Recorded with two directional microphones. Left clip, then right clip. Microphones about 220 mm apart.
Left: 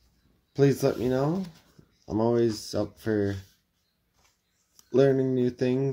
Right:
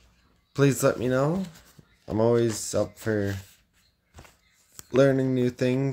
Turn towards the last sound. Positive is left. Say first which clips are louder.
# right 1 dB
turn(degrees=-25)  # may be behind; listen again after turning